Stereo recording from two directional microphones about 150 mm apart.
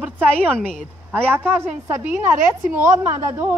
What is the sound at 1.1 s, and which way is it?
Speech, 10° right (ahead or behind).